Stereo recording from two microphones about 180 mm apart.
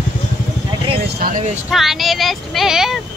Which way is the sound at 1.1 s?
50° right (ahead or behind).